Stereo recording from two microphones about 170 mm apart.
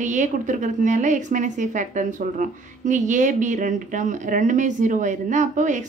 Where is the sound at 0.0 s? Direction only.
45° right (ahead or behind).